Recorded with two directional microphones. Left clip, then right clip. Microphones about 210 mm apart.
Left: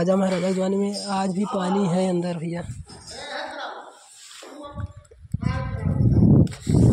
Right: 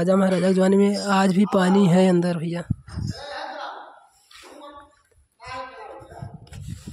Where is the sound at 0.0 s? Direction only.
25° right (ahead or behind).